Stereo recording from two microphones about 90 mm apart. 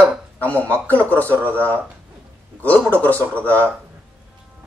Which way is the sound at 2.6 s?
15° left (ahead or behind).